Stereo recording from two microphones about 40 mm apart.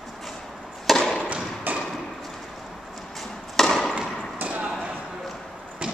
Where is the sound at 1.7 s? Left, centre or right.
Right.